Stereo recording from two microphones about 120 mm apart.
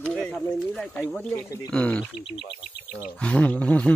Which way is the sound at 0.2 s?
15° left (ahead or behind).